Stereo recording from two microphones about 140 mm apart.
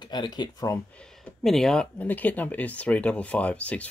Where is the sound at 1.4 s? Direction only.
Centre (ahead or behind).